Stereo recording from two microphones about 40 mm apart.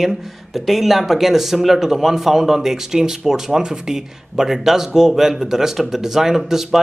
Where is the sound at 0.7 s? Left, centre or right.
Centre.